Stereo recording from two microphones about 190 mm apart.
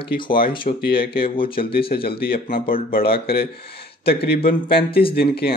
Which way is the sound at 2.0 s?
55° left (ahead or behind).